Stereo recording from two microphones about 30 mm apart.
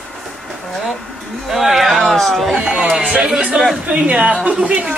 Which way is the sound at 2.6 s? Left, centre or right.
Right.